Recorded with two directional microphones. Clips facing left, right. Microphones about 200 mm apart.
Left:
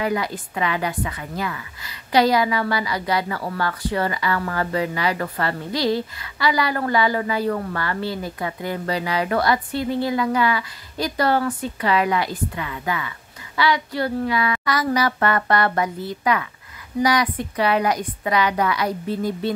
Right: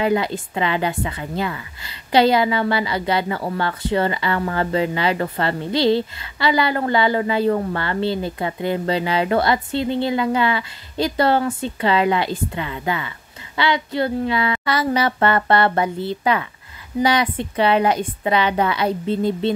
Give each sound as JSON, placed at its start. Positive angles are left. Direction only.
{"t": 0.0, "sound": "a woman's voice", "side_deg": -25}